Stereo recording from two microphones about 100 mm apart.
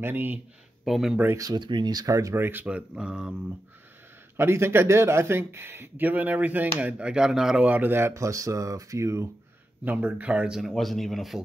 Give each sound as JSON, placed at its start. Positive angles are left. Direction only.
{"t": 0.0, "sound": "speech", "side_deg": -20}
{"t": 0.8, "sound": "speech", "side_deg": -5}
{"t": 1.3, "sound": "speech", "side_deg": -35}
{"t": 1.6, "sound": "speech", "side_deg": -50}
{"t": 2.6, "sound": "speech", "side_deg": -10}
{"t": 4.4, "sound": "speech", "side_deg": -25}
{"t": 9.8, "sound": "speech", "side_deg": -20}